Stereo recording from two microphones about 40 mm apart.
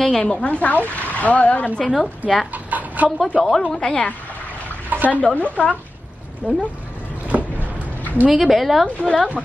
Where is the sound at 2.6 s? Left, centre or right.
Right.